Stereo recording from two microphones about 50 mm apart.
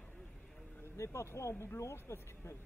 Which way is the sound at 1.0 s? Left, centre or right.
Left.